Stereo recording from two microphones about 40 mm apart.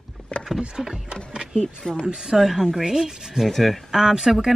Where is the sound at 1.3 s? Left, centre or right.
Right.